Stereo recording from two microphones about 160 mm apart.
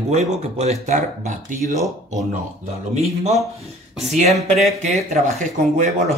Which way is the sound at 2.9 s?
45° right (ahead or behind).